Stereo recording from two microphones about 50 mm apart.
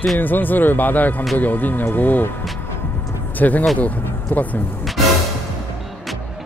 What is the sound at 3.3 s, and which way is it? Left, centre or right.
Speech, left.